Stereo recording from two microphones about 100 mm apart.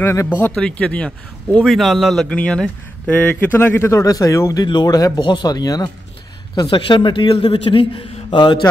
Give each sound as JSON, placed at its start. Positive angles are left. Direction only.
{"t": 0.0, "sound": "speech", "side_deg": 25}
{"t": 0.6, "sound": "speech", "side_deg": 10}
{"t": 1.6, "sound": "a man's voice", "side_deg": 0}
{"t": 2.2, "sound": "speech", "side_deg": 10}
{"t": 4.0, "sound": "speech", "side_deg": 35}
{"t": 4.6, "sound": "speech", "side_deg": 45}
{"t": 6.5, "sound": "a man's voice", "side_deg": 50}